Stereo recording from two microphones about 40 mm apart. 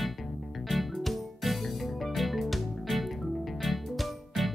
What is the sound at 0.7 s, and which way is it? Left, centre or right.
Music, centre.